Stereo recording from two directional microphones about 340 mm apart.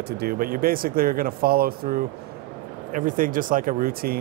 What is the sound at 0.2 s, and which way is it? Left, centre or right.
Speech, right.